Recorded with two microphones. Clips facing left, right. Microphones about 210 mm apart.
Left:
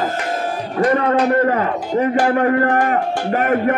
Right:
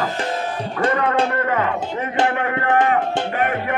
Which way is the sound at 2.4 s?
40° left (ahead or behind).